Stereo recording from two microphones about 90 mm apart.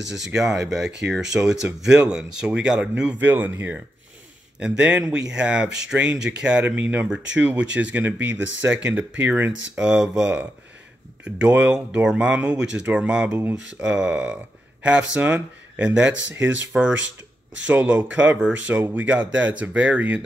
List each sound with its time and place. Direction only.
0.1 s speech: 5° right (ahead or behind)
13.4 s speech: 20° right (ahead or behind)
13.8 s speech: 10° right (ahead or behind)